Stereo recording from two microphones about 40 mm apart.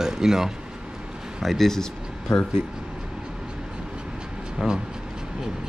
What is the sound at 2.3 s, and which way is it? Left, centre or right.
Speech, left.